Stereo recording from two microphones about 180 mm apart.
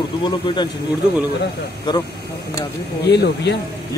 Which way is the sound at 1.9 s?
25° left (ahead or behind).